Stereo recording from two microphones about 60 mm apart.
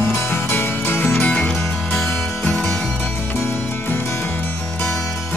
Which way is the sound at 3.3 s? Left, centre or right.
Left.